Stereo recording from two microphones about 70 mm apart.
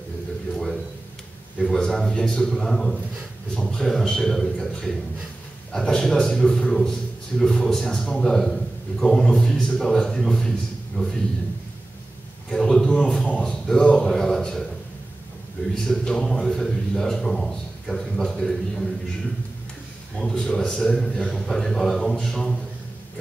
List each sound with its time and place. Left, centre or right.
1.7 s a man's voice: centre
10.9 s a man's voice: centre
12.4 s a man's voice: centre
15.7 s a man's voice: centre
20.2 s a man's voice: centre